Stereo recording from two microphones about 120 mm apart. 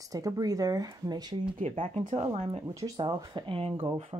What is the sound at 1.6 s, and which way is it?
Speech, 70° right (ahead or behind).